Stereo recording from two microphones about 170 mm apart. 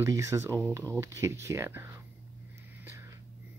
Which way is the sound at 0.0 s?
15° right (ahead or behind).